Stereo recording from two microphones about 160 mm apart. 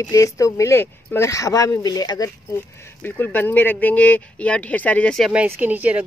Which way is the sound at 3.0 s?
10° left (ahead or behind).